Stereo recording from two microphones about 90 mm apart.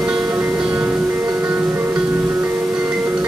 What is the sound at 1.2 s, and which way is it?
Music, 25° right (ahead or behind).